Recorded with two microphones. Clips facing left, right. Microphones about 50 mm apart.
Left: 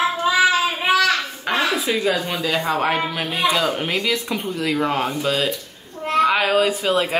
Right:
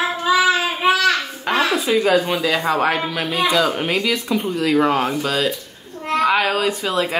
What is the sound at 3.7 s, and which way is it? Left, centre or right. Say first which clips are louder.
A child's voice: right 2 dB; centre.